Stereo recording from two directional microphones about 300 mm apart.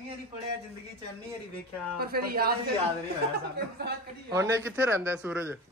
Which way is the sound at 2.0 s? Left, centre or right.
Right.